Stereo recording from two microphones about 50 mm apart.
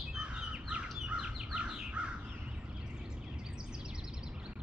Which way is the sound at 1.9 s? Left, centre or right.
Right.